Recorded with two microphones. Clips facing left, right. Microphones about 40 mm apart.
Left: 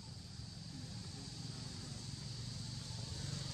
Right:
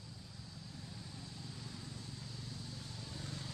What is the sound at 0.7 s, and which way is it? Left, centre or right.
Vehicle, centre.